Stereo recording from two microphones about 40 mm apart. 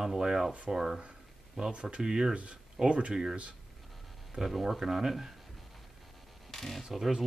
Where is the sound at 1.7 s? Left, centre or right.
Right.